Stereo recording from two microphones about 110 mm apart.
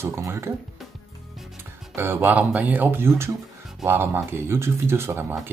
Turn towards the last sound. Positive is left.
turn(degrees=-20)  # may be behind; listen again after turning